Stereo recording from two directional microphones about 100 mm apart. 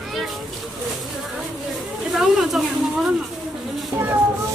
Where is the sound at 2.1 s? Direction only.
5° right (ahead or behind).